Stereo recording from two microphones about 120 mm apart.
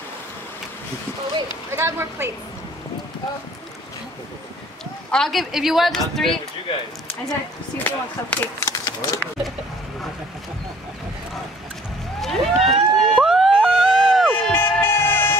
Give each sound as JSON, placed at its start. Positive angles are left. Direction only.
{"t": 1.7, "sound": "speech", "side_deg": -20}
{"t": 5.1, "sound": "speech", "side_deg": 5}
{"t": 7.8, "sound": "speech", "side_deg": 15}
{"t": 12.2, "sound": "a sound", "side_deg": 0}
{"t": 14.5, "sound": "vehicle", "side_deg": 20}